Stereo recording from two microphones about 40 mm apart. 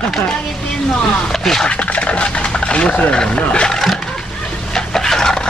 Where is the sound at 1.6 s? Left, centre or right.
Left.